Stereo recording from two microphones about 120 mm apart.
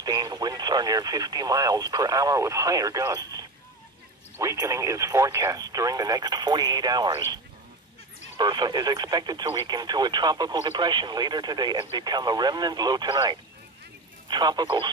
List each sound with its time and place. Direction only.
0.0 s speech: 35° right (ahead or behind)
8.4 s speech: 35° right (ahead or behind)